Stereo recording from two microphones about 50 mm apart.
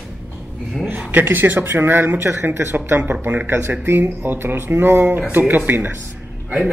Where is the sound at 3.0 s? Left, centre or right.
Right.